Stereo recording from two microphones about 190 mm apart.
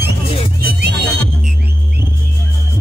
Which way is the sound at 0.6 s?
55° right (ahead or behind).